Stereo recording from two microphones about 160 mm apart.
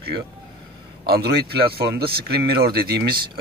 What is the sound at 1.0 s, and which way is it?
Speech, 80° right.